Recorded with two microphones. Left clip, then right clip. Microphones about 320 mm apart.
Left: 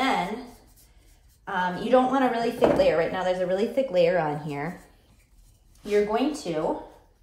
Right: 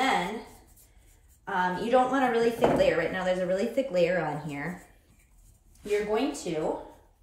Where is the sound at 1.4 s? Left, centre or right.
Centre.